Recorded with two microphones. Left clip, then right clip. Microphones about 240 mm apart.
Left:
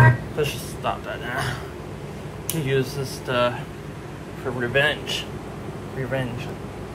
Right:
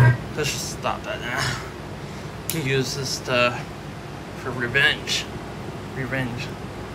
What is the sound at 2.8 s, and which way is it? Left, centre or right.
Speech, left.